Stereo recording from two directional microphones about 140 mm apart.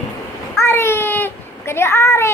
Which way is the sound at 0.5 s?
20° left (ahead or behind).